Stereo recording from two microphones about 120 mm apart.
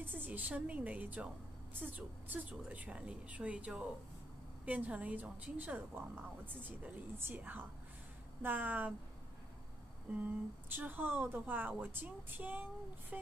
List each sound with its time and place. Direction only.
0.0 s a woman's voice: 15° right (ahead or behind)
10.1 s a woman's voice: 15° right (ahead or behind)